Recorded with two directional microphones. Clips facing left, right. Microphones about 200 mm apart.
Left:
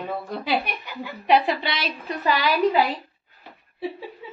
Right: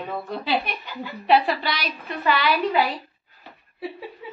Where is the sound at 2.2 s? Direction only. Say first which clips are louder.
Left 1 dB; 40° left (ahead or behind).